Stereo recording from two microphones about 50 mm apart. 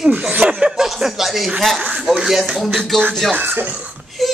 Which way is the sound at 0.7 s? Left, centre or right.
Centre.